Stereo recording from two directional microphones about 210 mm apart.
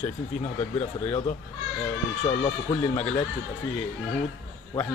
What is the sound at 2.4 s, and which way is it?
Speech, 25° left (ahead or behind).